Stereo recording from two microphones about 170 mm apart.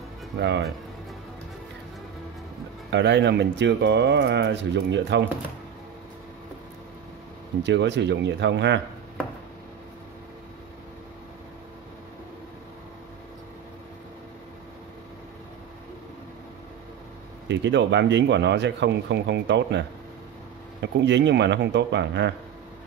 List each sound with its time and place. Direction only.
0.4 s speech: 90° right
2.9 s speech: 90° right
7.6 s speech: 90° right
17.5 s speech: 90° right
20.8 s speech: 90° right